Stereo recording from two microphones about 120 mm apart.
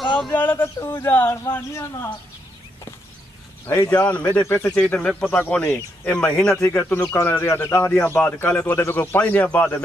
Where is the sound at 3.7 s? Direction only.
20° left (ahead or behind).